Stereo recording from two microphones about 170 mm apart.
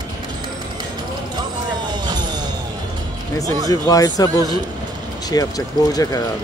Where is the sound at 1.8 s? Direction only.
25° right (ahead or behind).